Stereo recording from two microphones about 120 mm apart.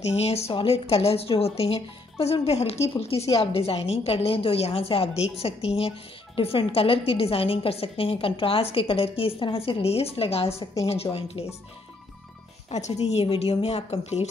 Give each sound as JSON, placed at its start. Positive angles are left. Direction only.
{"t": 0.1, "sound": "a woman's voice", "side_deg": 60}
{"t": 12.7, "sound": "a woman's voice", "side_deg": 65}